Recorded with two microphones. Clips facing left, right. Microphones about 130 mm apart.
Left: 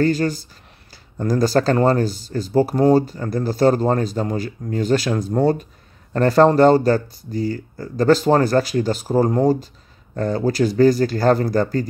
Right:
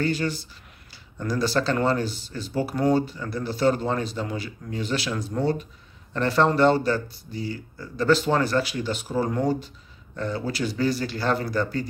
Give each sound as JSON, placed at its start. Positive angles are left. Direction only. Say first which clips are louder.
{"t": 0.0, "sound": "speech", "louder": "left 7 dB", "side_deg": 45}